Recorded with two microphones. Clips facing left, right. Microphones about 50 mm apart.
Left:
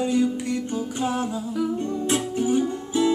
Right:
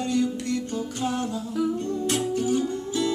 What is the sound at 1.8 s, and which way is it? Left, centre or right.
Music, left.